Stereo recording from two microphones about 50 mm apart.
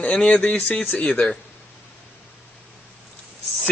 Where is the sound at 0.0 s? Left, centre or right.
Centre.